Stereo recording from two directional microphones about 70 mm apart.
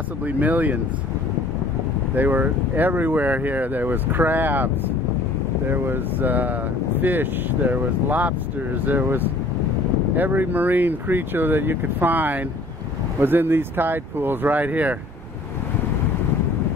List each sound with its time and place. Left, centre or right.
0.2 s speech: right
2.1 s speech: right